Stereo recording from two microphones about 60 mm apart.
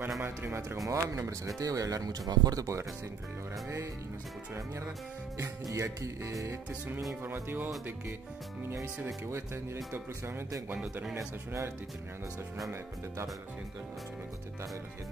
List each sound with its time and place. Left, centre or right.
0.2 s speech: right
0.8 s music: right
1.6 s speech: right
5.4 s music: right
7.4 s speech: right
11.1 s music: right